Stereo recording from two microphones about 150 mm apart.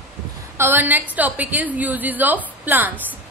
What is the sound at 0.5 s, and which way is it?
A woman's voice, 15° right (ahead or behind).